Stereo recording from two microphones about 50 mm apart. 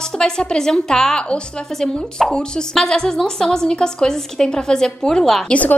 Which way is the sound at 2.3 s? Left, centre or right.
Centre.